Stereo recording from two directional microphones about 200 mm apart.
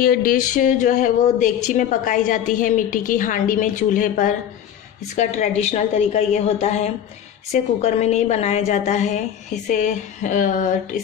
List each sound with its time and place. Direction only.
0.0 s speech: 45° left (ahead or behind)